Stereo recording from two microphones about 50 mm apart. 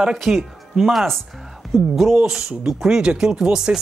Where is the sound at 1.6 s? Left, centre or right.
Centre.